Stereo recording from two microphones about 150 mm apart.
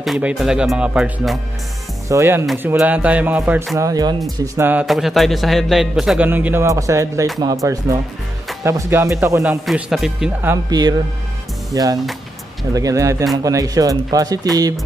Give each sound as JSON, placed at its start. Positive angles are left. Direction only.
{"t": 0.0, "sound": "a man's voice", "side_deg": -5}
{"t": 2.0, "sound": "a man's voice", "side_deg": -20}
{"t": 3.7, "sound": "speech", "side_deg": -25}
{"t": 4.6, "sound": "a man's voice", "side_deg": -15}
{"t": 4.8, "sound": "a man's voice", "side_deg": 0}
{"t": 9.4, "sound": "a man's voice", "side_deg": -5}
{"t": 10.7, "sound": "speech", "side_deg": -25}